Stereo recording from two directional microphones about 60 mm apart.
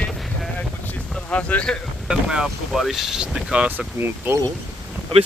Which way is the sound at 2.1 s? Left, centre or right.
Centre.